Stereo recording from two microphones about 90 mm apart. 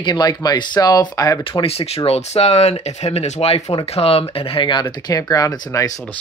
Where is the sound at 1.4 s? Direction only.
85° left; by 5.9 s 40° left (ahead or behind).